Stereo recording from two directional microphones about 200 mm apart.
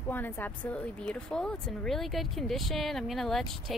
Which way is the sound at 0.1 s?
10° left (ahead or behind).